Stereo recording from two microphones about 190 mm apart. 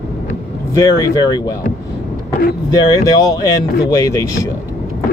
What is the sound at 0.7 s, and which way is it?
Speech, 20° left (ahead or behind).